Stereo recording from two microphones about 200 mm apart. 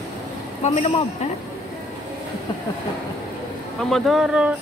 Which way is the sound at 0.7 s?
30° left (ahead or behind).